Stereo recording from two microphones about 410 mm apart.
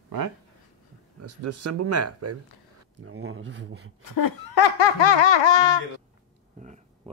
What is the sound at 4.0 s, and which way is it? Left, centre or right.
Laughter, left.